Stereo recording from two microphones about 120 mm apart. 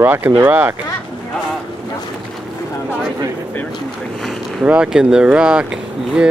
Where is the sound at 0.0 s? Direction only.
15° right (ahead or behind).